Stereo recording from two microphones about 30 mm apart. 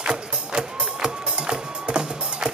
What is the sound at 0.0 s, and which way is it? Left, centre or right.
Music, right.